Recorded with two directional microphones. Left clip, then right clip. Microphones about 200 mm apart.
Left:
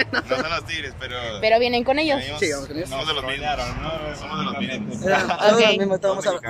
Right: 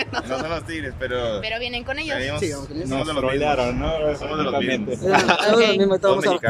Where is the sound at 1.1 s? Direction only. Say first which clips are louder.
Right 7 dB; 45° right (ahead or behind).